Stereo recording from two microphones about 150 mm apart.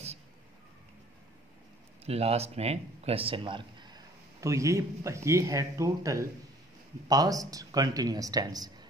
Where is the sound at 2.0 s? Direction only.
45° right (ahead or behind).